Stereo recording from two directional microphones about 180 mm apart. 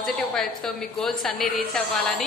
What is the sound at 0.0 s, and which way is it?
A woman's voice, centre (ahead or behind).